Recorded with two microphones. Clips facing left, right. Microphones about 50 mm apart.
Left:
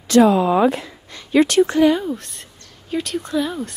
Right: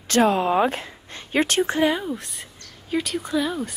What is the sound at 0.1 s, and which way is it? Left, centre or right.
Speech, right.